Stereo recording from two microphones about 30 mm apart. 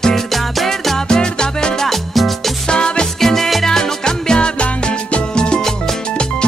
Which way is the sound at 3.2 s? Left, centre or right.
Centre.